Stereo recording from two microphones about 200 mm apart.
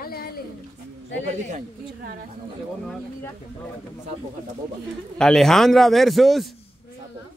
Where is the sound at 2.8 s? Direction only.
5° left (ahead or behind).